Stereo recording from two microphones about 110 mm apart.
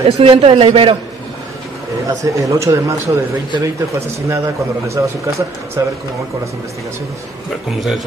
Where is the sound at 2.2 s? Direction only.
30° right (ahead or behind).